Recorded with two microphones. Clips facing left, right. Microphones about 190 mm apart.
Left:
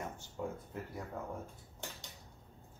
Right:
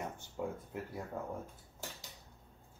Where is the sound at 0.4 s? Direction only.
10° right (ahead or behind).